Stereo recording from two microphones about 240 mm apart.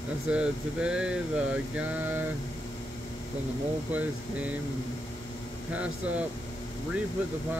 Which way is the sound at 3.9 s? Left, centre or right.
Centre.